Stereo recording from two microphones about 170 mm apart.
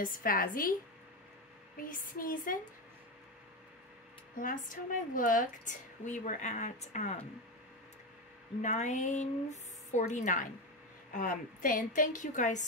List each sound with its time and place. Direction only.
0.0 s speech: 55° left (ahead or behind)
1.8 s speech: 55° left (ahead or behind)
4.4 s a woman's voice: 50° left (ahead or behind)
8.5 s a woman's voice: 45° left (ahead or behind)